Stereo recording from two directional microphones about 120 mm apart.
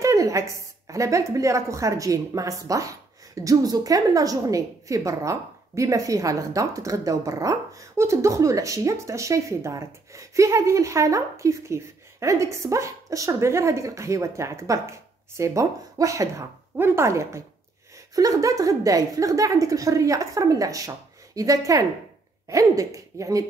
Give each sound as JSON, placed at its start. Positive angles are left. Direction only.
{"t": 0.0, "sound": "a woman's voice", "side_deg": -25}